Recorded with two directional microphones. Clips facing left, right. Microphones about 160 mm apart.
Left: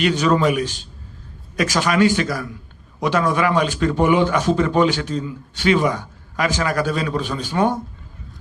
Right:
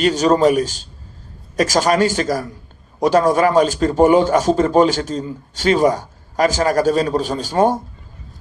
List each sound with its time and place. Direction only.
0.0 s a man's voice: 40° right (ahead or behind)